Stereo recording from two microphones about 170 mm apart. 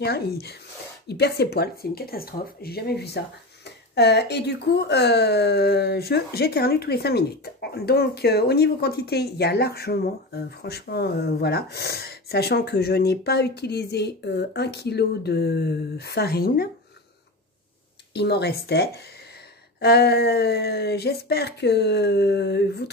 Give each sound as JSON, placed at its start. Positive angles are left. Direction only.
{"t": 0.0, "sound": "speech", "side_deg": 70}
{"t": 18.1, "sound": "speech", "side_deg": 75}